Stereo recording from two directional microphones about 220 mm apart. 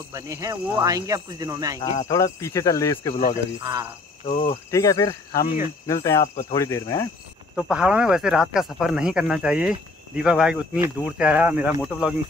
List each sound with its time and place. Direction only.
0.1 s speech: 15° right (ahead or behind)
2.0 s speech: 15° left (ahead or behind)
3.6 s speech: 15° right (ahead or behind)
4.3 s cricket: 30° left (ahead or behind)
4.6 s speech: 15° left (ahead or behind)
7.5 s speech: 5° right (ahead or behind)